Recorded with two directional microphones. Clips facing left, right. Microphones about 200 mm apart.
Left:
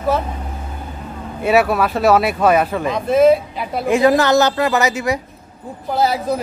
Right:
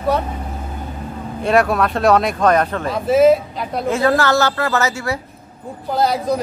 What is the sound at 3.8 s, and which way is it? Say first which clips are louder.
Speech: left 3 dB; 15° left (ahead or behind).